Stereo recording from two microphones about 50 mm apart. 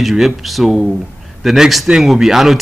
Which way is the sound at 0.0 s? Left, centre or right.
Centre.